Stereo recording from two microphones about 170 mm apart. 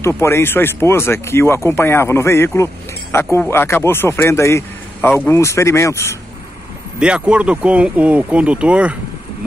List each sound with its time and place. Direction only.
0.2 s speech: 15° left (ahead or behind)
7.0 s speech: 5° right (ahead or behind)